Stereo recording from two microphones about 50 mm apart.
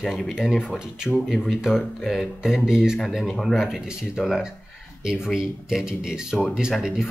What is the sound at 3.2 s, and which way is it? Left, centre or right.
Speech, centre.